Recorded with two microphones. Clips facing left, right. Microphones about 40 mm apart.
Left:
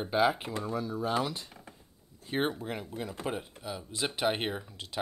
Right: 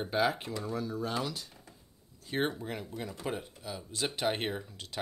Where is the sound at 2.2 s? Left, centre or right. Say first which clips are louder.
Left 1 dB; centre.